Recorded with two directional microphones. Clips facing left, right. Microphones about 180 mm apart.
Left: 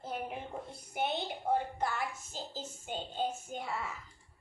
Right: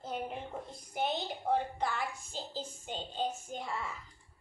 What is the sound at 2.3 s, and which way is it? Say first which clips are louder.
Speech: right 2 dB; 45° left (ahead or behind).